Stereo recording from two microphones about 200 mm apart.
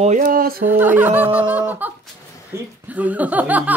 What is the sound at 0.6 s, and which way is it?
Speech, 10° right (ahead or behind).